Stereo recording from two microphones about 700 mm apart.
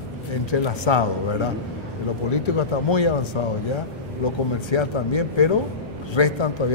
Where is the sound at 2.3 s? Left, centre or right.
Left.